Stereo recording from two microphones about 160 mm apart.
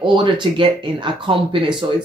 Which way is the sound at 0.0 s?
30° right (ahead or behind).